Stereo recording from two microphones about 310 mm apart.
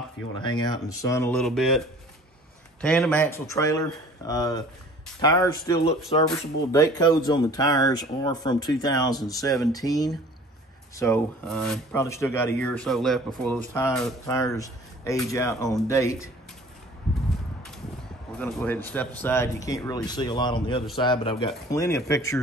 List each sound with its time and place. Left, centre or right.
0.4 s speech: centre
2.8 s speech: centre
18.4 s speech: centre